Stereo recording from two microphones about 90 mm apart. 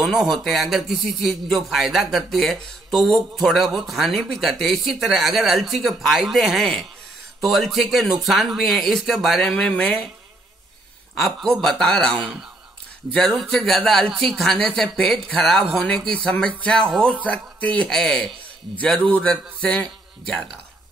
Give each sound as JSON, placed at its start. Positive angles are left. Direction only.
{"t": 0.0, "sound": "speech", "side_deg": 0}
{"t": 11.1, "sound": "a man's voice", "side_deg": 0}
{"t": 13.4, "sound": "a man's voice", "side_deg": 5}
{"t": 17.8, "sound": "a man's voice", "side_deg": 5}